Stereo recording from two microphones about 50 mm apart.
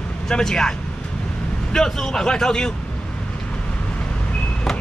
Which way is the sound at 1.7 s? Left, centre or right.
Centre.